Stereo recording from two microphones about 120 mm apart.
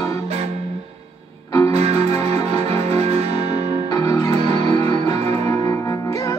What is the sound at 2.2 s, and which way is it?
Music, 60° right (ahead or behind).